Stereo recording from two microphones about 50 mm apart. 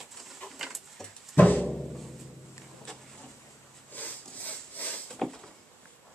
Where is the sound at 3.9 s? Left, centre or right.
Left.